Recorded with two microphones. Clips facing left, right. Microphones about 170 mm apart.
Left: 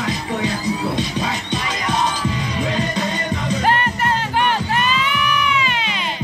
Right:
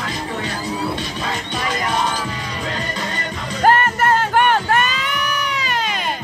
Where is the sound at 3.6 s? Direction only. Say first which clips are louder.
Right 6 dB; 45° right (ahead or behind).